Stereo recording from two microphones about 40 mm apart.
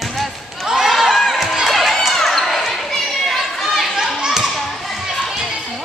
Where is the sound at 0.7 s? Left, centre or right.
Centre.